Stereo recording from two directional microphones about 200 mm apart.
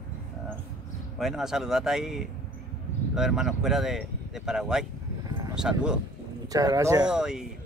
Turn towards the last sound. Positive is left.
turn(degrees=-5)  # may be behind; listen again after turning